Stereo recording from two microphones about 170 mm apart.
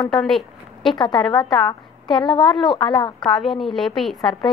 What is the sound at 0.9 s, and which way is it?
Speech, 30° left (ahead or behind).